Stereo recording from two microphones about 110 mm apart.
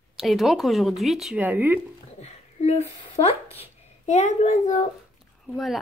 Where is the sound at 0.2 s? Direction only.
Centre (ahead or behind).